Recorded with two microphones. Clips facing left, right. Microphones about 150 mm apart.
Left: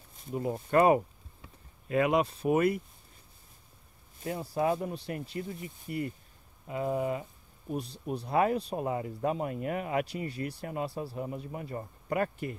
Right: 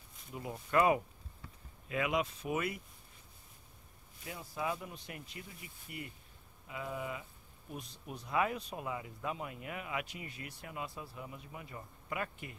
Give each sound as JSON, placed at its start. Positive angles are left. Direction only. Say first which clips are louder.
{"t": 0.3, "sound": "speech", "louder": "left 7 dB", "side_deg": 40}
{"t": 4.2, "sound": "speech", "louder": "left 10 dB", "side_deg": 45}